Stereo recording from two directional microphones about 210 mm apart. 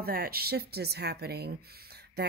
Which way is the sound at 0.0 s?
45° right (ahead or behind).